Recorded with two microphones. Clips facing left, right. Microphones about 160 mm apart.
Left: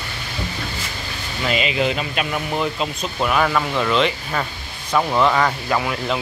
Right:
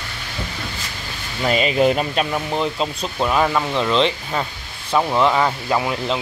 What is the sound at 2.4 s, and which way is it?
Speech, 25° right (ahead or behind).